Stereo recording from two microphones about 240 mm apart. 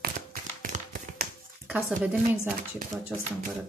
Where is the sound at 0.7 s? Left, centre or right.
Right.